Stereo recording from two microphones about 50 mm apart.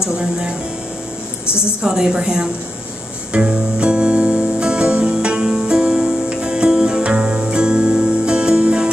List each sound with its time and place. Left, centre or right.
0.0 s a woman's voice: centre
1.8 s a woman's voice: centre
3.3 s music: right